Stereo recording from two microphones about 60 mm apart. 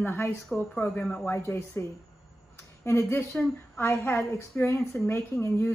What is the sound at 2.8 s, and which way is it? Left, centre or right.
A woman's voice, left.